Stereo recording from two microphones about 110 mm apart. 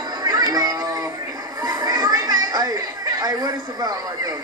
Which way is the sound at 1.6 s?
35° right (ahead or behind).